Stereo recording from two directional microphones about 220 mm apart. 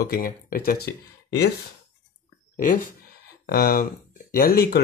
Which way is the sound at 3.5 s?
40° left (ahead or behind).